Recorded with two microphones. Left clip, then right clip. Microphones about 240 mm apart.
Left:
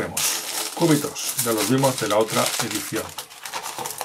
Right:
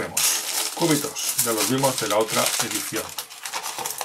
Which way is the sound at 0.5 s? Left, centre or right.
Centre.